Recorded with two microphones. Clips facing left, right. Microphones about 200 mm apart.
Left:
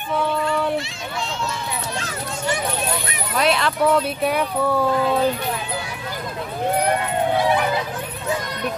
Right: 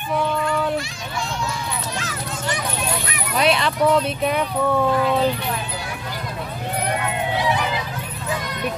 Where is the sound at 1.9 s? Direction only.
30° left (ahead or behind).